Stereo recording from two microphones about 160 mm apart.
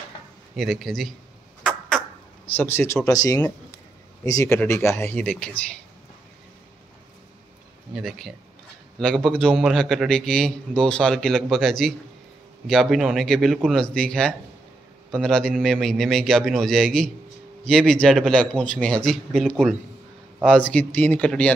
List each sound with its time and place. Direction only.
0.6 s a man's voice: centre (ahead or behind)
1.6 s a sound: 5° left (ahead or behind)
2.5 s speech: 15° left (ahead or behind)
7.9 s a man's voice: centre (ahead or behind)